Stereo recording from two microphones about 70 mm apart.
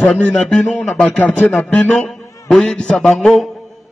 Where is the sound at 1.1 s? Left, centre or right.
Left.